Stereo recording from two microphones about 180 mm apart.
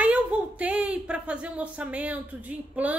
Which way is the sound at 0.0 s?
10° right (ahead or behind).